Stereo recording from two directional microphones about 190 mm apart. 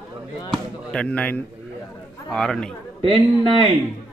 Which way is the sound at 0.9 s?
5° left (ahead or behind).